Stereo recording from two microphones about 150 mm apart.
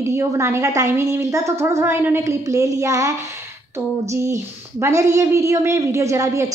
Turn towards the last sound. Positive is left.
turn(degrees=-20)  # may be behind; listen again after turning